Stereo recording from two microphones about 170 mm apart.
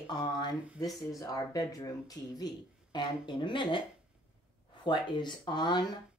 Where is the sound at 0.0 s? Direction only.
25° left (ahead or behind).